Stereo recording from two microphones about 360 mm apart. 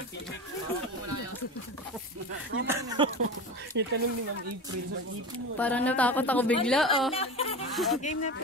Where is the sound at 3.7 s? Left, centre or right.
Right.